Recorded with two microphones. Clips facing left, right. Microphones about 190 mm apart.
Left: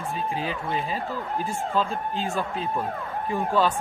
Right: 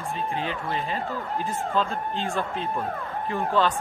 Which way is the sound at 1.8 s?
5° left (ahead or behind).